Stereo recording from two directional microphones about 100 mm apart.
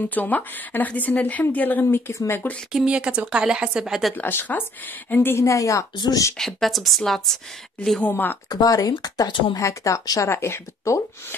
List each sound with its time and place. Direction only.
0.1 s speech: 15° left (ahead or behind)
2.7 s a woman's voice: 10° right (ahead or behind)
4.1 s speech: 20° left (ahead or behind)
5.9 s speech: 45° left (ahead or behind)
6.3 s a woman's voice: centre (ahead or behind)
8.0 s speech: 20° left (ahead or behind)
8.5 s speech: 40° left (ahead or behind)